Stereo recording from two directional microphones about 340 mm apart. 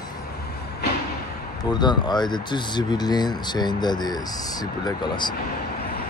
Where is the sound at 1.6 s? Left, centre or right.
Centre.